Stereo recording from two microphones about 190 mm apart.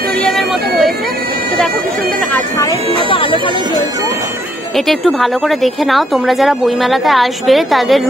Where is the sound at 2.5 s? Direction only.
25° left (ahead or behind).